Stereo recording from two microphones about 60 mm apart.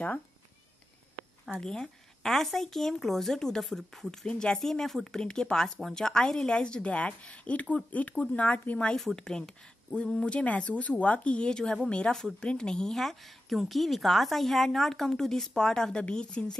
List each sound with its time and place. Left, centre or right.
1.6 s speech: centre
8.9 s speech: centre